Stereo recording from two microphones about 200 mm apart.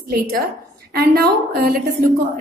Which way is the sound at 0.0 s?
50° right (ahead or behind).